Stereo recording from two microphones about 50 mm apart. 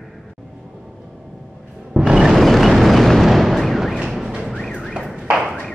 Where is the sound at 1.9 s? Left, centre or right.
Centre.